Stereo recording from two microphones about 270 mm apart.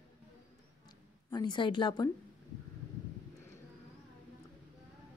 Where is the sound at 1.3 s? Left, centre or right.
Centre.